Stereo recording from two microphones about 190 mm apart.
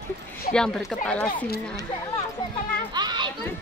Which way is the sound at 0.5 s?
5° left (ahead or behind).